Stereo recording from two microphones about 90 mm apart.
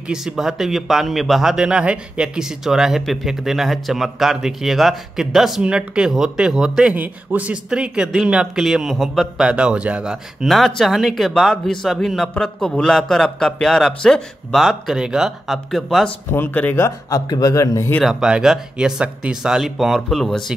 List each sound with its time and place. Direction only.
0.1 s speech: 5° right (ahead or behind)
9.4 s speech: 10° right (ahead or behind)
10.4 s speech: centre (ahead or behind)
16.3 s speech: 20° left (ahead or behind)
16.7 s speech: 30° left (ahead or behind)
17.3 s a man's voice: 45° left (ahead or behind)
18.0 s speech: 5° right (ahead or behind)